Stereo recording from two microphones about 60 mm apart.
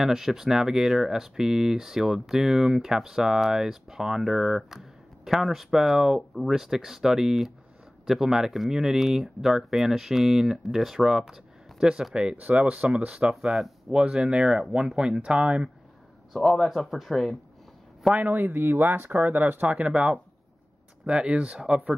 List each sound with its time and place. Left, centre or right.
0.0 s speech: centre
13.3 s speech: centre
14.0 s speech: centre
16.3 s speech: centre
18.1 s speech: right
19.8 s speech: centre